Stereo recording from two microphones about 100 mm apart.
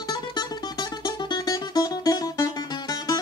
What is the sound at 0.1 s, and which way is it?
Music, 45° left (ahead or behind).